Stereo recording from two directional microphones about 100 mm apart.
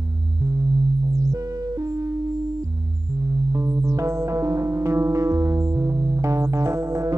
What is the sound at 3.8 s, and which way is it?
Music, 30° right (ahead or behind).